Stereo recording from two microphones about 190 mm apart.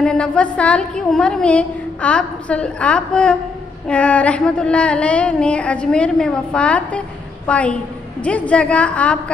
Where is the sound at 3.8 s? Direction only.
5° left (ahead or behind).